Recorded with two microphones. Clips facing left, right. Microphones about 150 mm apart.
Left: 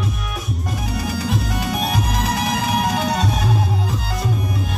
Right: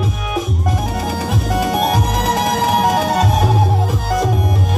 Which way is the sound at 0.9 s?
50° right (ahead or behind).